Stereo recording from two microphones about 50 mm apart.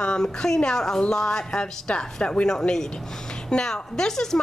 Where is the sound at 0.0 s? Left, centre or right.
Centre.